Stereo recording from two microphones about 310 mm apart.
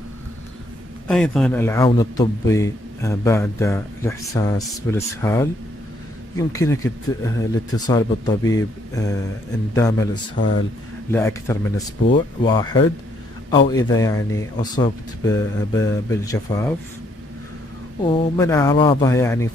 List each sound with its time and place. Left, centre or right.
1.0 s a man's voice: centre
18.0 s a man's voice: centre